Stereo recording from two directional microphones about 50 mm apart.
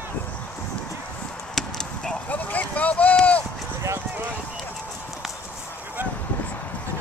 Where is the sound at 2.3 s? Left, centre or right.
Left.